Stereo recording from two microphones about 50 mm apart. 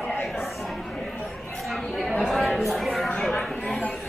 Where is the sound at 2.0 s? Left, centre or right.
Centre.